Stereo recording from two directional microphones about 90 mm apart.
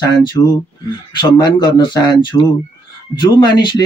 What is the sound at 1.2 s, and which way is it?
Speech, 55° left (ahead or behind).